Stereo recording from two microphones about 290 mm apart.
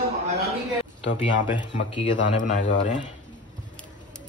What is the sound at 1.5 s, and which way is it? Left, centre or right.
Speech, centre.